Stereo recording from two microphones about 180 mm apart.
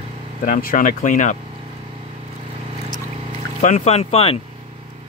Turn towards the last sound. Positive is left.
turn(degrees=35)  # may be behind; listen again after turning